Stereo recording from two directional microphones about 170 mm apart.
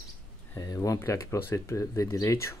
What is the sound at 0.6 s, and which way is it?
Speech, 20° left (ahead or behind).